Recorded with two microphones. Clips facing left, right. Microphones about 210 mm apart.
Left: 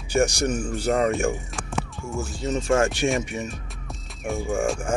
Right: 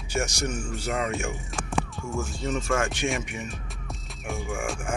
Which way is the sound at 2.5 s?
35° left (ahead or behind).